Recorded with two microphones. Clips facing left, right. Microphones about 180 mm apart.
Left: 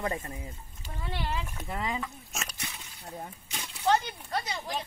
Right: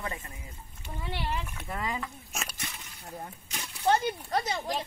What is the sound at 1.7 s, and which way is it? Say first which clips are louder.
Speech: left 1 dB; 25° left (ahead or behind).